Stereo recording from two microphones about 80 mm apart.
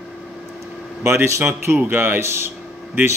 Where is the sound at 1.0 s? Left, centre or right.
Right.